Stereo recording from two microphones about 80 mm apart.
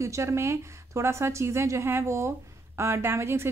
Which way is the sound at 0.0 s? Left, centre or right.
Right.